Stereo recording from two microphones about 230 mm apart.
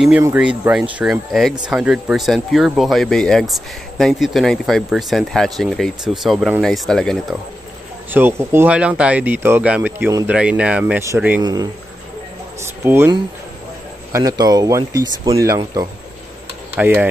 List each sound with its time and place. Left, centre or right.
0.2 s speech: centre
8.1 s speech: centre
12.8 s speech: centre